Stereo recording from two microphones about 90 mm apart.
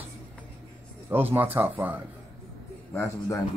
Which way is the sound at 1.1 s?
20° right (ahead or behind).